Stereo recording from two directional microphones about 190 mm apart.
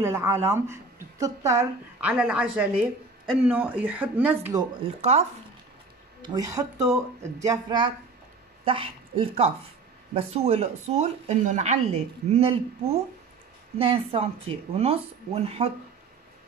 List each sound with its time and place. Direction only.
0.0 s a woman's voice: 15° right (ahead or behind)
6.2 s speech: 20° right (ahead or behind)